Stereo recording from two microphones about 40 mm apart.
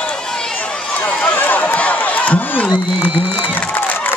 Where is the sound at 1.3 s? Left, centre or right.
Left.